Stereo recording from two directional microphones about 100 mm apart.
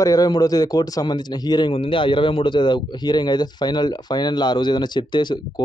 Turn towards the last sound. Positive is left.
turn(degrees=50)  # may be behind; listen again after turning